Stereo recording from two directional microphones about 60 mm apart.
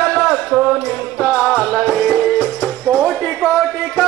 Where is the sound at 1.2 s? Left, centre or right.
Left.